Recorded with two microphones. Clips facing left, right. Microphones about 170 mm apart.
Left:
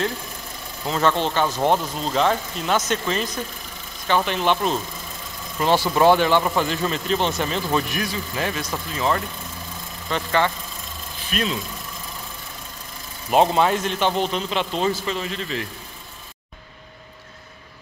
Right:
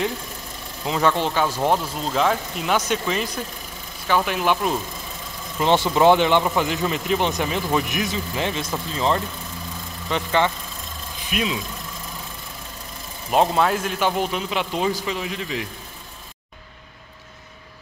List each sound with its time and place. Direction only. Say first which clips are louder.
0.8 s speech: even; 10° right (ahead or behind)
5.6 s speech: right 1 dB; 20° right (ahead or behind)
13.3 s speech: left 1 dB; centre (ahead or behind)